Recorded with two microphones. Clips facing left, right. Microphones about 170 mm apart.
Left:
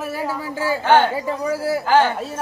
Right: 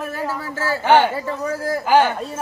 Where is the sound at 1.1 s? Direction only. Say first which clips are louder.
Left 2 dB; 10° left (ahead or behind).